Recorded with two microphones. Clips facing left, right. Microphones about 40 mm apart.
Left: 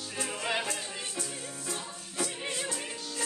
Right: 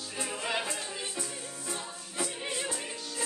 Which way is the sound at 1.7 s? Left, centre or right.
Centre.